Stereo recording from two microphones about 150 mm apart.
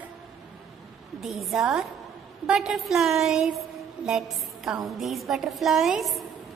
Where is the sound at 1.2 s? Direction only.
Centre (ahead or behind).